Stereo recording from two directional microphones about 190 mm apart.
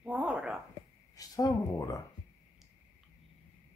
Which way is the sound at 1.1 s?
20° left (ahead or behind).